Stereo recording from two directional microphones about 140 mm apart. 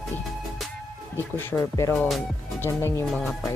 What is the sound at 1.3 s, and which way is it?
Speech, 20° left (ahead or behind).